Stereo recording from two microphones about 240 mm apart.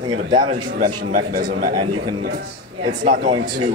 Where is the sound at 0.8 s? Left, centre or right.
Right.